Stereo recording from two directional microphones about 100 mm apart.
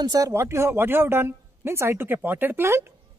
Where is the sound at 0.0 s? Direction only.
40° right (ahead or behind).